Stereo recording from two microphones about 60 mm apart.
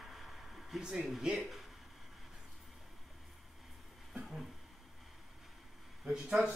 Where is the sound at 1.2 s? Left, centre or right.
Centre.